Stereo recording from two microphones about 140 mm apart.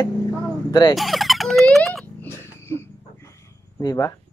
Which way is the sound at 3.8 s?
25° left (ahead or behind).